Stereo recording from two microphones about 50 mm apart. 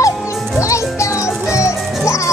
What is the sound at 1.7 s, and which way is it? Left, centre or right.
Music, centre.